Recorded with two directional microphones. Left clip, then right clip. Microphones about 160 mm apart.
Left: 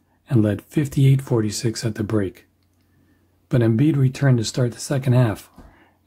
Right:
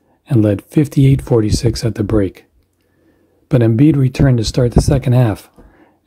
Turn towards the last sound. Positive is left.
turn(degrees=-30)  # may be behind; listen again after turning